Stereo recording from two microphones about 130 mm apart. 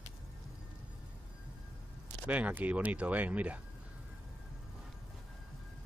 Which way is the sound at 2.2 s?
10° right (ahead or behind).